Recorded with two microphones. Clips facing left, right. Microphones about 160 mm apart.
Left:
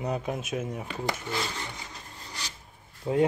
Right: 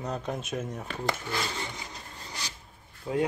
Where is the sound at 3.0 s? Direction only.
25° left (ahead or behind).